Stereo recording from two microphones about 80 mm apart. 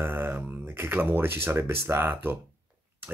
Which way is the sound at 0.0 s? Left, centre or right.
Right.